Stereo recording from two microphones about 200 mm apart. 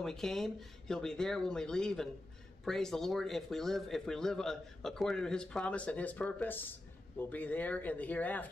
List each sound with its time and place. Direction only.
0.0 s speech: centre (ahead or behind)